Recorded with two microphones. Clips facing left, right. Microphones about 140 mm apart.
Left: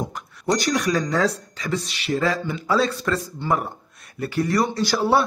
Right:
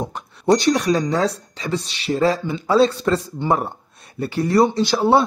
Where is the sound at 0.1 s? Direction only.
25° right (ahead or behind).